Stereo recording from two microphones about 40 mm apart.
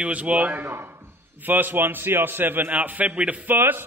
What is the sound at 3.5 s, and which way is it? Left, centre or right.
Speech, right.